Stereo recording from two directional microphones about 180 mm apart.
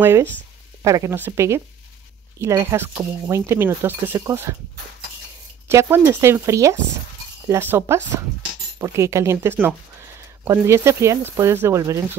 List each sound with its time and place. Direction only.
0.0 s speech: 15° right (ahead or behind)
5.7 s speech: 15° right (ahead or behind)